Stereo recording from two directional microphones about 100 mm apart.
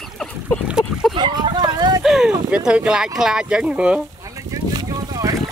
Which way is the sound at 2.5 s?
10° right (ahead or behind).